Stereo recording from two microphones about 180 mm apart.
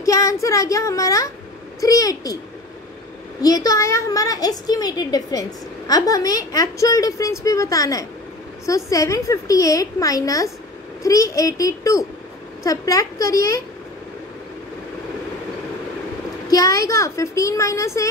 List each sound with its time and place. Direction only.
0.0 s a woman's voice: 20° left (ahead or behind)
3.4 s a woman's voice: 20° left (ahead or behind)
16.4 s speech: 20° left (ahead or behind)